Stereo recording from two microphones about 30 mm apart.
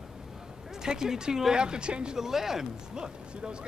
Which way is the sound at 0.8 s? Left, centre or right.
Centre.